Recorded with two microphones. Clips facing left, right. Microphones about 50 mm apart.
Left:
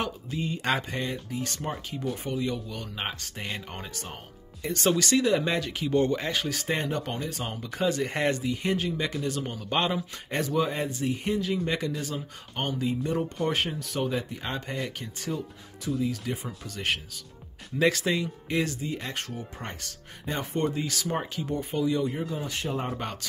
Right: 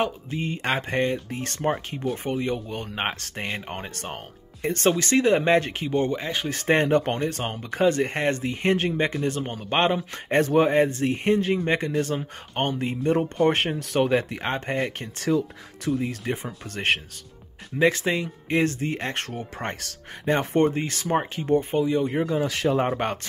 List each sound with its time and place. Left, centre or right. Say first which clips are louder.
0.0 s speech: right 5 dB; right
4.0 s speech: right 6 dB; right
5.9 s speech: even; centre
6.5 s speech: right 9 dB; right
8.9 s speech: right 5 dB; right
11.9 s speech: right 8 dB; right
15.2 s speech: right 11 dB; right
15.9 s speech: right 3 dB; right
17.7 s speech: right 3 dB; right
22.1 s speech: right 8 dB; right